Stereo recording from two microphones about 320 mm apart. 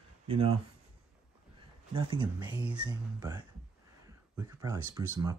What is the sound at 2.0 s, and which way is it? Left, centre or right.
Speech, centre.